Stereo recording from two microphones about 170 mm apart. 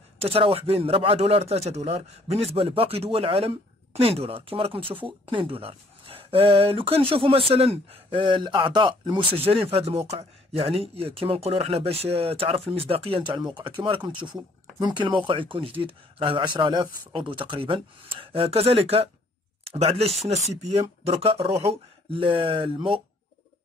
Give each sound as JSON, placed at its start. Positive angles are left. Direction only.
{"t": 0.2, "sound": "speech", "side_deg": -35}